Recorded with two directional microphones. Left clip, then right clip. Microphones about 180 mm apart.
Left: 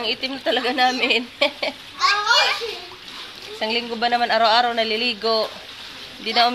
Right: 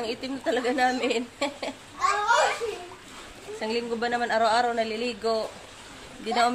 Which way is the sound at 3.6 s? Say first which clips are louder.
Left 6 dB; 25° left (ahead or behind).